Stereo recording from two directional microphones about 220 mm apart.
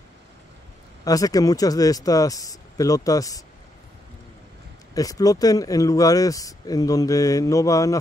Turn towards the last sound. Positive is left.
turn(degrees=15)  # may be behind; listen again after turning